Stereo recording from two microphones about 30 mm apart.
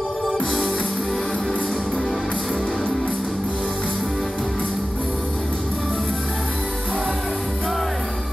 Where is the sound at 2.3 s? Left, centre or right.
Centre.